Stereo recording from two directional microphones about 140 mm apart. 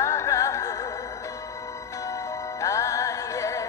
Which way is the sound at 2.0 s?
25° left (ahead or behind).